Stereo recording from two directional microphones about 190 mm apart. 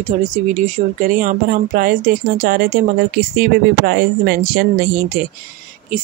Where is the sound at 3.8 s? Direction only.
55° right (ahead or behind).